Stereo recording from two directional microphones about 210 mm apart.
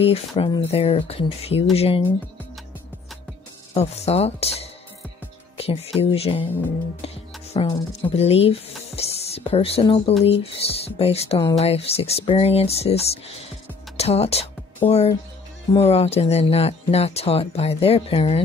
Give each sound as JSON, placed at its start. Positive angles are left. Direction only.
{"t": 0.3, "sound": "speech", "side_deg": 25}
{"t": 3.7, "sound": "speech", "side_deg": 30}
{"t": 7.5, "sound": "speech", "side_deg": 30}